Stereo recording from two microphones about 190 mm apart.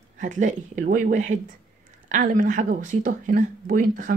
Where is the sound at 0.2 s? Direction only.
40° right (ahead or behind).